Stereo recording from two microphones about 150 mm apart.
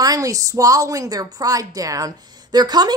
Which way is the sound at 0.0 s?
25° right (ahead or behind).